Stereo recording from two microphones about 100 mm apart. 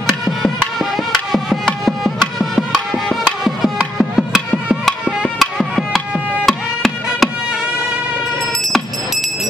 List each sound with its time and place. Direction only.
0.0 s music: 5° left (ahead or behind)
5.4 s music: centre (ahead or behind)